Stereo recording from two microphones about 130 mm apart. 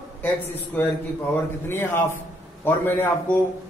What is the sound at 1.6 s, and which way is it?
A man's voice, 20° left (ahead or behind).